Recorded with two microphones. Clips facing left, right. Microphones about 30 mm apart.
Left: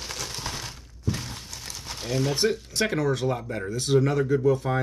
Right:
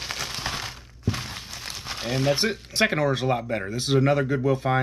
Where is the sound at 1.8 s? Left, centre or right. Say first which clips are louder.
Right 3 dB; right.